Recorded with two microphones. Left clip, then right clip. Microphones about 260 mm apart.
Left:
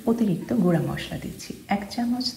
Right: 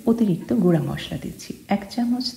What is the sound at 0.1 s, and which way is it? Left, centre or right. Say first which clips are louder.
Speech: right 3 dB; right.